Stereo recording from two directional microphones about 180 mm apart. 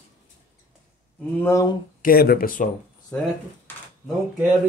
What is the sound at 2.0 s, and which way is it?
Speech, 55° left (ahead or behind).